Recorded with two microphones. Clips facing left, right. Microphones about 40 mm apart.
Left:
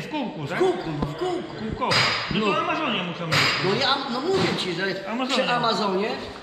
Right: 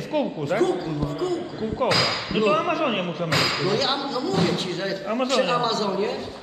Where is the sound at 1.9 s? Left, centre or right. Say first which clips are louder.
Left 2 dB; left.